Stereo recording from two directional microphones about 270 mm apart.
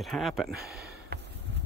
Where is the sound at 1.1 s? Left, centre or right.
Right.